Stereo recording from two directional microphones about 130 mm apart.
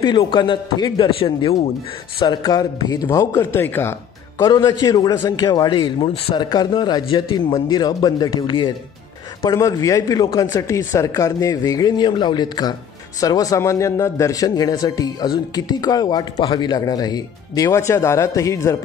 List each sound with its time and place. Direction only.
0.0 s a man's voice: 35° left (ahead or behind); by 3.9 s 15° left (ahead or behind)
4.5 s a man's voice: 30° left (ahead or behind)
9.4 s a man's voice: 25° left (ahead or behind)